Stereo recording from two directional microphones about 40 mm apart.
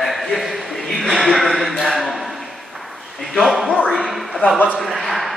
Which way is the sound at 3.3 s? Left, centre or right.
Centre.